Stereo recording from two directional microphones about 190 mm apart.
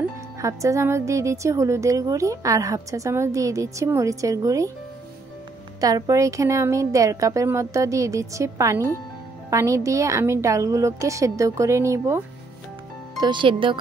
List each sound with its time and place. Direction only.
0.4 s a woman's voice: 15° right (ahead or behind)
5.8 s a woman's voice: 20° right (ahead or behind)
13.2 s speech: 25° right (ahead or behind)